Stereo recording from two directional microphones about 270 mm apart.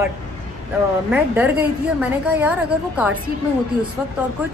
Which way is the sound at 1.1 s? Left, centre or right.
Centre.